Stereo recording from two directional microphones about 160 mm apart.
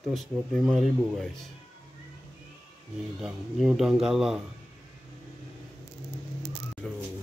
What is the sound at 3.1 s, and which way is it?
Speech, 5° right (ahead or behind).